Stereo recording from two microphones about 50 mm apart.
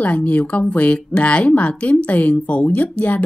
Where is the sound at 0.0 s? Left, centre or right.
Left.